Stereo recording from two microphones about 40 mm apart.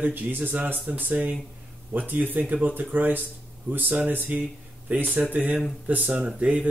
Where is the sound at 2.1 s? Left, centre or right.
Right.